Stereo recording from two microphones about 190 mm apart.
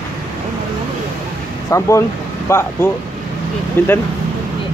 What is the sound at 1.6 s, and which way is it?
Speech, 15° left (ahead or behind).